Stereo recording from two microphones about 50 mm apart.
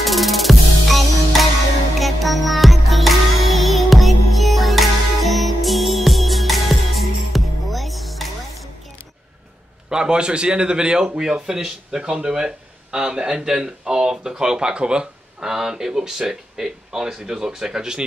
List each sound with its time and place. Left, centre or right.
0.0 s music: centre
9.8 s speech: centre